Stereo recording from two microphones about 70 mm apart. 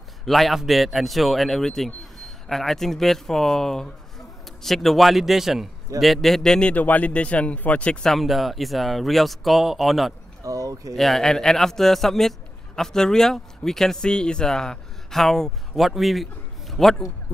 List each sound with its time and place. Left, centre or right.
0.2 s a man's voice: centre
6.7 s a man's voice: left; by 10.1 s centre
10.4 s speech: right
11.0 s a man's voice: centre